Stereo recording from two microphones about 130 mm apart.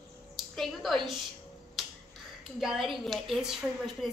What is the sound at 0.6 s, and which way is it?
Speech, centre (ahead or behind).